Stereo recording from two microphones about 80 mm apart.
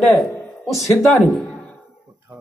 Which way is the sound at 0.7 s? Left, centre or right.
Centre.